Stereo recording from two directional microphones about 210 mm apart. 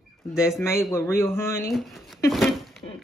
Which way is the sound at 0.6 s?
10° left (ahead or behind).